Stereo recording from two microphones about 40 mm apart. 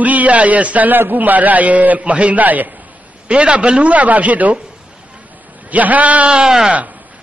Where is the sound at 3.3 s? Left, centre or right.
Right.